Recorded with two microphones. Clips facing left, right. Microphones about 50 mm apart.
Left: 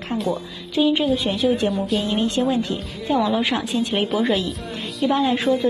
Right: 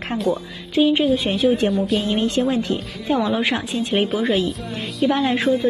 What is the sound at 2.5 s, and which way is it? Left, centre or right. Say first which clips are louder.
Speech: right 1 dB; right.